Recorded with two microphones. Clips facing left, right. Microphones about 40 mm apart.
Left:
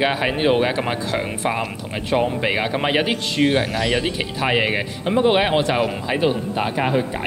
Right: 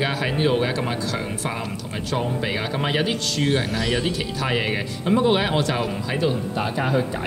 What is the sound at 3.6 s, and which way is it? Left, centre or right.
Speech, centre.